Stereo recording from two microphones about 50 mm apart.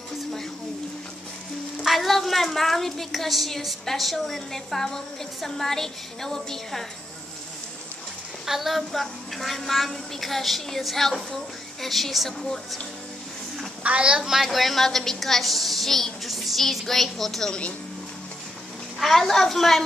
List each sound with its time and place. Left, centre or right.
1.8 s a woman's voice: centre
8.5 s a woman's voice: centre
13.8 s a woman's voice: right
14.2 s a woman's voice: centre
18.9 s a woman's voice: centre